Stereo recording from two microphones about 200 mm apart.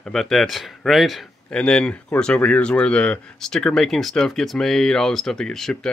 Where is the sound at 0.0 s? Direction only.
Centre (ahead or behind).